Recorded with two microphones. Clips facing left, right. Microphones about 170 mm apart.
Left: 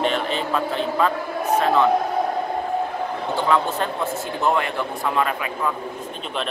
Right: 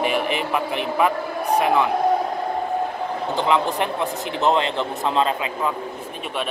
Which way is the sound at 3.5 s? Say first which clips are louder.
Right 1 dB; 15° right (ahead or behind).